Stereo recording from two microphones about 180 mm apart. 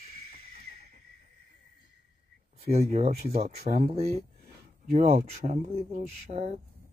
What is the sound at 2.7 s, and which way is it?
Speech, 35° right (ahead or behind).